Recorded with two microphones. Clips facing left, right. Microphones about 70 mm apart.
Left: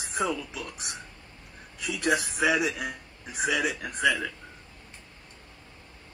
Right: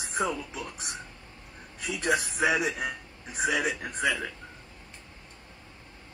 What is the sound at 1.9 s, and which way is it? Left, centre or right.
Speech, left.